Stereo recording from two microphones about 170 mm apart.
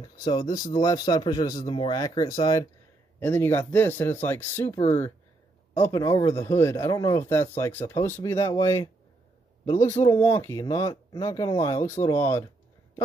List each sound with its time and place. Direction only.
0.0 s a man's voice: 25° left (ahead or behind)
10.1 s a man's voice: 15° left (ahead or behind)